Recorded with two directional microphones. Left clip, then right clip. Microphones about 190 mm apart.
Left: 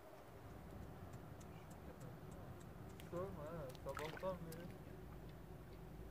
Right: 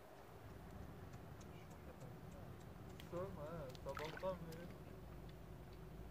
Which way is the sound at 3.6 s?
15° left (ahead or behind).